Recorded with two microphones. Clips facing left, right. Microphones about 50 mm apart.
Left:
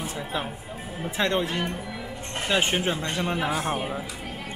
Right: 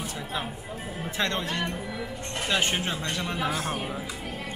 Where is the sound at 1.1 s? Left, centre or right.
Centre.